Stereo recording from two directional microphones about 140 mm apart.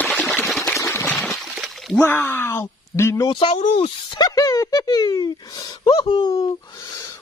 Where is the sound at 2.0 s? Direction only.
15° left (ahead or behind).